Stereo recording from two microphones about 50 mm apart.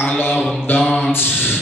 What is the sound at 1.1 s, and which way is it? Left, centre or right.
Mantra, left.